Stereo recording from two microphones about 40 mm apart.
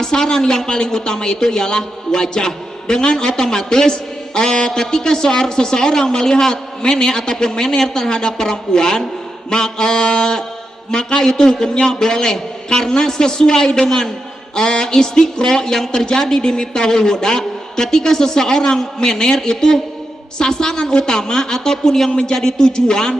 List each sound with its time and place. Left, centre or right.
0.0 s a woman's voice: centre